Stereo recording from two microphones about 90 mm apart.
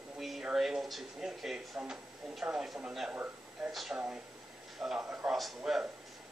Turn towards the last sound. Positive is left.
turn(degrees=0)  # may be behind; listen again after turning